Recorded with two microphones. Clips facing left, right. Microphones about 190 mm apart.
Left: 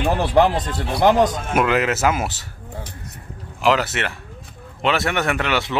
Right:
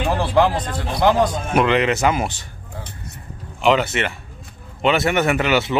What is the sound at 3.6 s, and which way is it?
Speech, centre (ahead or behind).